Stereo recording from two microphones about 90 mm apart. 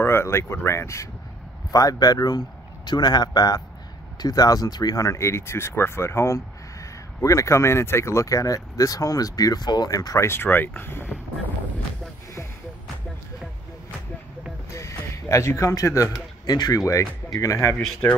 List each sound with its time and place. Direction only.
0.0 s speech: 30° left (ahead or behind)
10.2 s speech: 25° left (ahead or behind)
14.7 s a sound: 35° left (ahead or behind)
16.4 s speech: 50° left (ahead or behind)
17.3 s speech: 40° left (ahead or behind)